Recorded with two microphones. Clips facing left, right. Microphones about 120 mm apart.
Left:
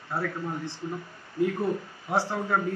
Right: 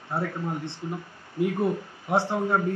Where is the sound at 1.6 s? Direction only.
20° right (ahead or behind).